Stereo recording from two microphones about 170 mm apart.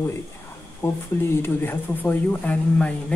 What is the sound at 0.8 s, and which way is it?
Speech, 15° left (ahead or behind).